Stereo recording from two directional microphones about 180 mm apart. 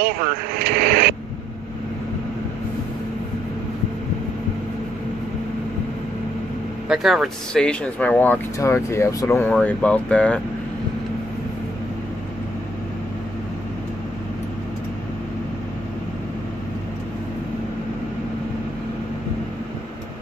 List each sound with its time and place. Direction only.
0.0 s speech: 55° right (ahead or behind)
6.9 s speech: centre (ahead or behind)